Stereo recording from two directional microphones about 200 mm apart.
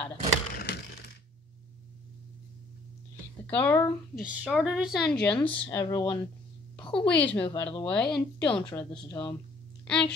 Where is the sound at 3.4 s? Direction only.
5° left (ahead or behind).